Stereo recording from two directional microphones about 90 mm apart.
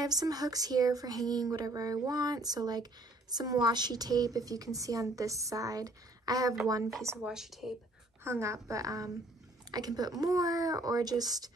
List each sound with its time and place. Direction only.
0.0 s a woman's voice: 45° right (ahead or behind)
7.2 s a woman's voice: 5° right (ahead or behind)
8.2 s a woman's voice: 30° right (ahead or behind); by 11.5 s 45° right (ahead or behind)